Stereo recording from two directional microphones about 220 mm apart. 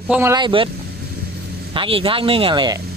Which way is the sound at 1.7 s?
25° right (ahead or behind).